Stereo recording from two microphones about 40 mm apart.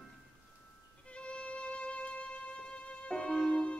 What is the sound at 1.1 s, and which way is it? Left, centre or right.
Music, left.